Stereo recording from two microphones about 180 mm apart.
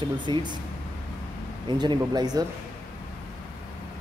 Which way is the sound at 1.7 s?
25° right (ahead or behind).